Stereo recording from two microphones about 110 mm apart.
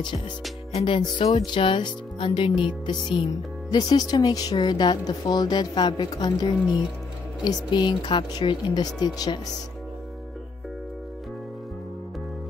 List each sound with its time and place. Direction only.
0.7 s speech: 50° left (ahead or behind)
3.7 s a woman's voice: 35° left (ahead or behind)